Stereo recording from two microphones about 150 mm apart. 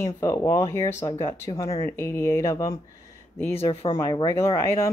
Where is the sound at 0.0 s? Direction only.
20° left (ahead or behind).